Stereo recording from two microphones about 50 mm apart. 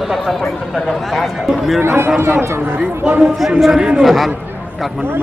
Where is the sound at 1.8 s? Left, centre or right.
Right.